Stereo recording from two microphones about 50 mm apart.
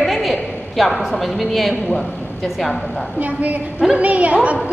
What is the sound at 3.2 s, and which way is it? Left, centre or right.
A woman's voice, right.